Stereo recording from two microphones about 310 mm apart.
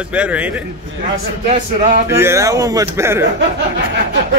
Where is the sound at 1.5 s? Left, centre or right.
Right.